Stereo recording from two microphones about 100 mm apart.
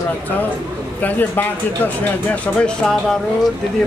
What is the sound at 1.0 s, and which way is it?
Speech, 20° left (ahead or behind).